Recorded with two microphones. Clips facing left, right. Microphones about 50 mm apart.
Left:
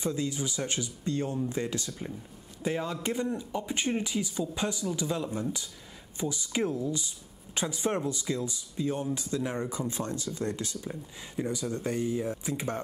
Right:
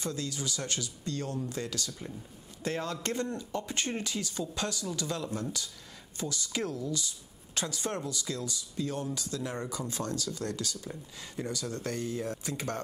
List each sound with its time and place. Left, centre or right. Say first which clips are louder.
0.0 s speech: left 4 dB; centre
2.6 s speech: left 3 dB; centre